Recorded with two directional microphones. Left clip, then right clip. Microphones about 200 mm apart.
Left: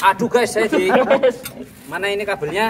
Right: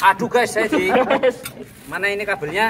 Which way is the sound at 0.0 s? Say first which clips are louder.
Even; 30° left (ahead or behind).